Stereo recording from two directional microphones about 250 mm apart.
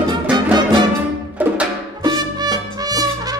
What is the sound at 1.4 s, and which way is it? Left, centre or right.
Music, centre.